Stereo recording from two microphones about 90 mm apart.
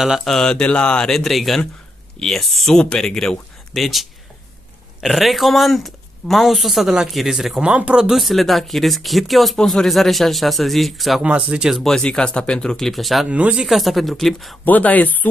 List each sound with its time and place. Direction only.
0.0 s speech: centre (ahead or behind)
11.2 s speech: 15° right (ahead or behind)
11.8 s speech: 5° left (ahead or behind)
13.3 s speech: 15° right (ahead or behind)
13.7 s speech: centre (ahead or behind)
14.6 s speech: 20° left (ahead or behind)